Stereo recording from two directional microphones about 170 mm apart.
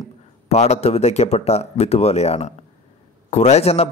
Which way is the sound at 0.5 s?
40° left (ahead or behind).